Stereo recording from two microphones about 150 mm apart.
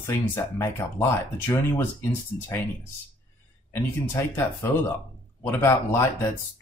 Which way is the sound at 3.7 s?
15° left (ahead or behind).